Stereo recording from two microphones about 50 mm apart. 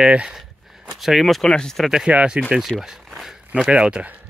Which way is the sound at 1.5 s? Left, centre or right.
Centre.